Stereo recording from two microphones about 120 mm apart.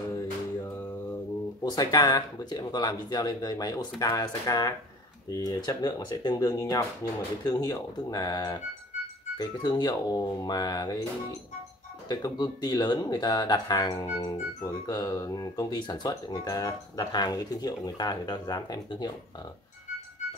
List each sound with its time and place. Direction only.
1.6 s speech: 30° left (ahead or behind)
12.1 s speech: 35° left (ahead or behind)